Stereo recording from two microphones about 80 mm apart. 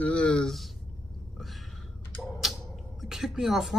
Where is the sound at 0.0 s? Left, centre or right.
Centre.